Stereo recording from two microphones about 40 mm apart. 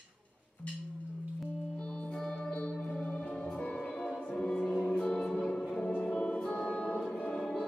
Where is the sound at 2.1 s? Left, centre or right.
Centre.